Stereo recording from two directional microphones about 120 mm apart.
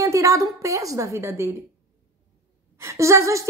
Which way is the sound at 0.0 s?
25° right (ahead or behind).